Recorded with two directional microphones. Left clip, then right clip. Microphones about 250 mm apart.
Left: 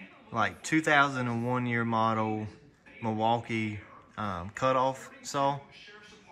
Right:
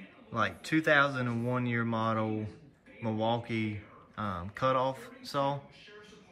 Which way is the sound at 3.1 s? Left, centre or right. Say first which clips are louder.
Left 4 dB; left.